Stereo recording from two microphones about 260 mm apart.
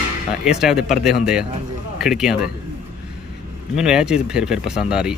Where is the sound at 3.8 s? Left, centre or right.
Centre.